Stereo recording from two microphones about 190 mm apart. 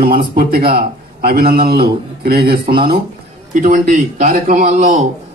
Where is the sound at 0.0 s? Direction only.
50° right (ahead or behind).